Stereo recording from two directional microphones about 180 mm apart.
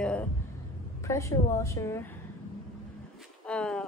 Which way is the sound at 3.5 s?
5° left (ahead or behind).